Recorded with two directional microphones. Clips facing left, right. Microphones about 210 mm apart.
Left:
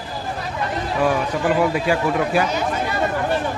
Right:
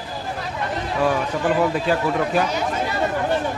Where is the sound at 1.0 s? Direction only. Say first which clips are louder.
Left 1 dB; 10° left (ahead or behind).